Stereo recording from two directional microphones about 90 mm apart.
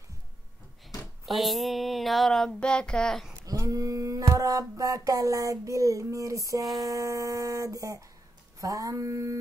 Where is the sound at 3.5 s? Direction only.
40° right (ahead or behind).